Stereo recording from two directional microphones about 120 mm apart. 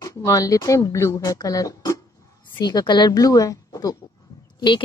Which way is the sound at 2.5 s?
35° left (ahead or behind).